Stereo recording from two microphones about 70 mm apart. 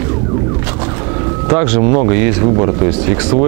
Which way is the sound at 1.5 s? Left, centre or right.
Centre.